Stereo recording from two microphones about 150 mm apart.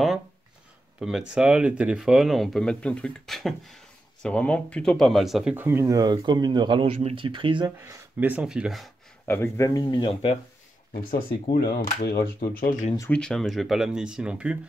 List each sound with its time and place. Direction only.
0.9 s speech: 5° right (ahead or behind); by 7.7 s 35° right (ahead or behind)
7.8 s speech: 10° right (ahead or behind)
9.3 s speech: 20° left (ahead or behind); by 10.4 s 40° left (ahead or behind)
10.9 s speech: 70° left (ahead or behind)
13.1 s speech: 5° left (ahead or behind)